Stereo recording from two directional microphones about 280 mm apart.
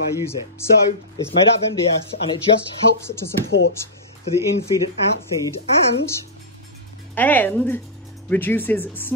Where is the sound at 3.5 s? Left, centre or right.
Left.